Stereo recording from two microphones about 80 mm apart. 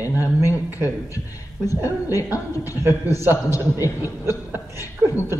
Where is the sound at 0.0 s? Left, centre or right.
Right.